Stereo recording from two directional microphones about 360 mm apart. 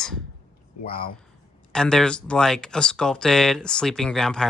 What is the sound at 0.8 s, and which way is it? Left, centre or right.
Speech, left.